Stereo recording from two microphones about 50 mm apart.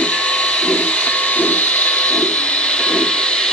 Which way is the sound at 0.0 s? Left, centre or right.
Left.